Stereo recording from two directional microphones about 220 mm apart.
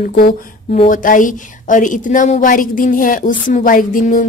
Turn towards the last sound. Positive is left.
turn(degrees=40)  # may be behind; listen again after turning